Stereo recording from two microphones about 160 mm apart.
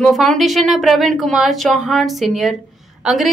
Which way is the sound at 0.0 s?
Centre (ahead or behind).